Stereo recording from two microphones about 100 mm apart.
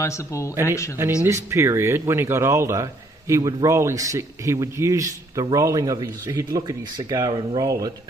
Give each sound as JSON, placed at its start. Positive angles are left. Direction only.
{"t": 0.0, "sound": "speech", "side_deg": 30}
{"t": 1.2, "sound": "a man's voice", "side_deg": -25}